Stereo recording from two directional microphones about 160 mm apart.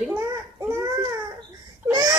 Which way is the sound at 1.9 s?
25° right (ahead or behind).